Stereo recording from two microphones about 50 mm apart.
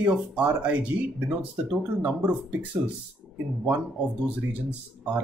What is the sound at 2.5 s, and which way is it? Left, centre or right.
Speech, right.